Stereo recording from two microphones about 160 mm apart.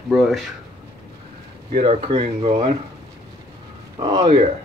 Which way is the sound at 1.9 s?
35° right (ahead or behind).